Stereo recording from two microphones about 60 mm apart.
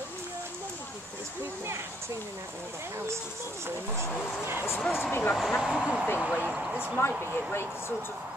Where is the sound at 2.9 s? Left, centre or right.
Right.